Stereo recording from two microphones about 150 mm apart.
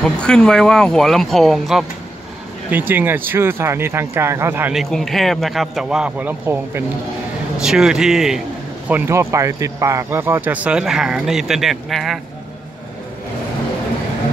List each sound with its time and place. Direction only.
0.0 s a man's voice: 5° left (ahead or behind)
2.7 s speech: 10° right (ahead or behind)
4.7 s a man's voice: centre (ahead or behind); by 6.8 s 15° right (ahead or behind)
7.6 s a man's voice: 5° right (ahead or behind)
8.8 s speech: 15° right (ahead or behind)